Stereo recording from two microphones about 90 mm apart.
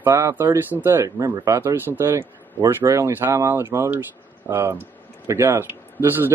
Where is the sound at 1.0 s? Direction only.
40° right (ahead or behind).